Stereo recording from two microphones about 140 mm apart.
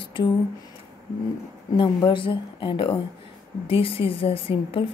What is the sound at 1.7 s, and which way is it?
A woman's voice, 35° left (ahead or behind).